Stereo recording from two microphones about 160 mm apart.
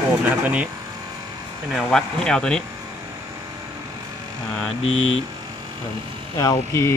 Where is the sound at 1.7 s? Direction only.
5° left (ahead or behind).